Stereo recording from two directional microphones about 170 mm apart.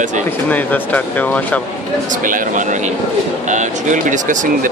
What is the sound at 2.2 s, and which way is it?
Speech, 50° right (ahead or behind).